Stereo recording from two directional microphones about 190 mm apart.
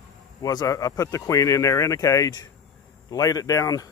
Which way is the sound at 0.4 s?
20° left (ahead or behind).